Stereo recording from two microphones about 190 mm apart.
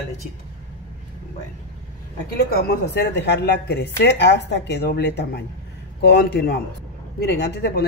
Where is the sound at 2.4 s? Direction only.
55° left (ahead or behind).